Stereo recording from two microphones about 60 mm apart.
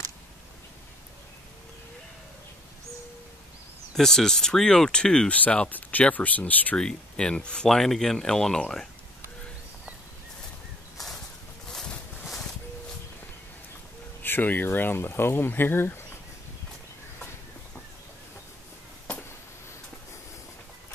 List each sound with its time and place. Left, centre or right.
3.9 s speech: centre
5.3 s speech: left
6.8 s speech: centre
14.2 s speech: left